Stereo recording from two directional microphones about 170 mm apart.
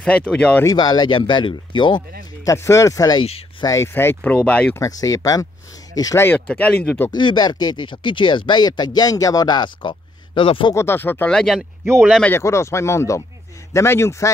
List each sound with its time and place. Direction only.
0.0 s speech: 5° left (ahead or behind)
0.7 s speech: 25° left (ahead or behind); by 4.8 s 10° left (ahead or behind)
4.8 s speech: 20° left (ahead or behind)
7.2 s speech: 25° left (ahead or behind)
10.7 s speech: 15° left (ahead or behind)
11.8 s speech: 15° right (ahead or behind)
12.1 s speech: 10° left (ahead or behind)